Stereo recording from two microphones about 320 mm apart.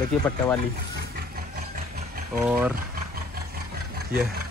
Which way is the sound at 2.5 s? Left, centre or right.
Centre.